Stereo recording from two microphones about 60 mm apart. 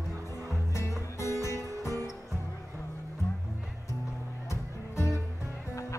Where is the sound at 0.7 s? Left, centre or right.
Left.